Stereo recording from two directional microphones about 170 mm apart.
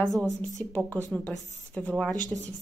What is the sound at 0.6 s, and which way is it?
A woman's voice, 10° left (ahead or behind).